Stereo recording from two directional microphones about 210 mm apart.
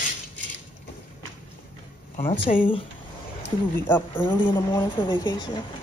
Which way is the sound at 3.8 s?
10° left (ahead or behind).